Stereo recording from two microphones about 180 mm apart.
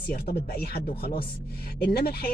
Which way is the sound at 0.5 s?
60° left (ahead or behind).